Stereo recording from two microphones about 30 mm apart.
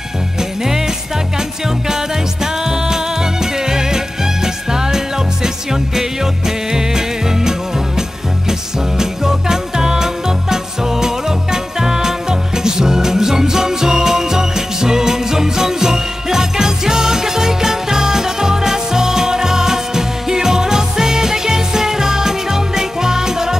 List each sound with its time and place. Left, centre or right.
0.4 s jingle bell: centre
1.9 s music: centre